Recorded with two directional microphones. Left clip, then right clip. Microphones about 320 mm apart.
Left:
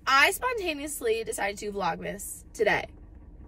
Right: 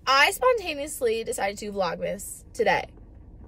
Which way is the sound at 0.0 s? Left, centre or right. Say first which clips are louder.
Right 2 dB; centre.